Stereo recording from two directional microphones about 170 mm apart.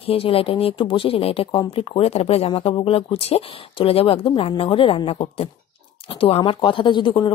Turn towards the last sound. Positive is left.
turn(degrees=30)  # may be behind; listen again after turning